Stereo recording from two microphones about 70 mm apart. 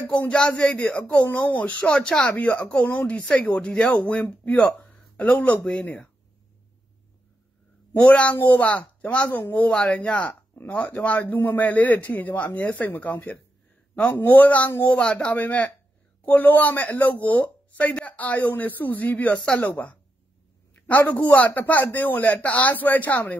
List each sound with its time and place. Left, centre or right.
0.3 s speech: centre
5.6 s speech: centre
7.9 s speech: centre